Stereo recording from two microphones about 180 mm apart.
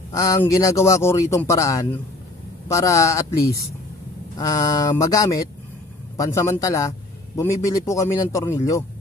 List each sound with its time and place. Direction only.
0.1 s a man's voice: 15° left (ahead or behind)
4.4 s a man's voice: 20° left (ahead or behind)